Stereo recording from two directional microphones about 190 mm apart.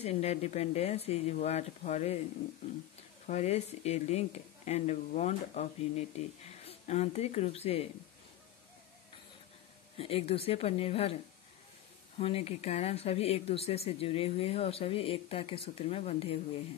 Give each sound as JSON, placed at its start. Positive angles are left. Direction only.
{"t": 0.0, "sound": "speech", "side_deg": 35}
{"t": 3.3, "sound": "speech", "side_deg": 35}
{"t": 9.9, "sound": "speech", "side_deg": 30}
{"t": 12.2, "sound": "speech", "side_deg": 30}